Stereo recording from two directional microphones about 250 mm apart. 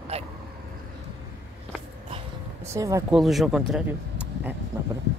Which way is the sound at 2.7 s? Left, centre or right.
Centre.